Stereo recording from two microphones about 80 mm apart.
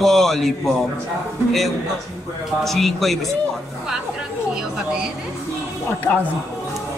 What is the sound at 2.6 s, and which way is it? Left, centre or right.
Speech, centre.